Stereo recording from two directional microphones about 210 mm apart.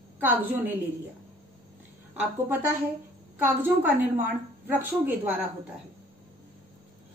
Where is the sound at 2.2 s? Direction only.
10° right (ahead or behind).